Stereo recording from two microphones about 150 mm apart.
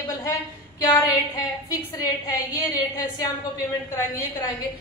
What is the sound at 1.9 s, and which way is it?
A woman's voice, 25° left (ahead or behind).